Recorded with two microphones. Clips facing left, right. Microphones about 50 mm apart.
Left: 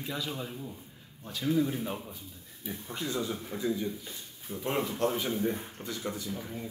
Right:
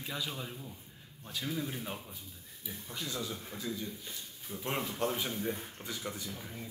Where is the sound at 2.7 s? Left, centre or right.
Left.